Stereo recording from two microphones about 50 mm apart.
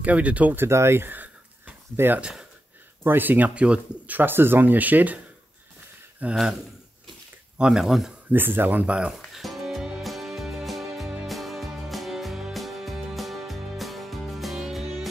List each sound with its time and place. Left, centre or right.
0.0 s speech: right
0.7 s speech: right
3.0 s speech: right
4.2 s speech: right
6.2 s speech: right
7.5 s speech: centre
7.8 s speech: centre
8.3 s speech: right
9.3 s music: centre